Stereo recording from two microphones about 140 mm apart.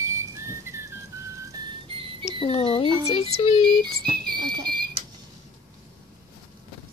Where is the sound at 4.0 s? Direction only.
90° right.